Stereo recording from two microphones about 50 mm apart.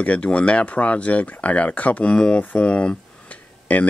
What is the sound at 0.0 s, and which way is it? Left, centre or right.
Speech, left.